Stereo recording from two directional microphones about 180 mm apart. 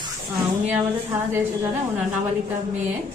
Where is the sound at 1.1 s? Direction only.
15° right (ahead or behind).